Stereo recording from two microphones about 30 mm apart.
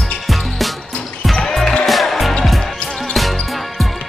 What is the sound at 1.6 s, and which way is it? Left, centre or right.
Music, left.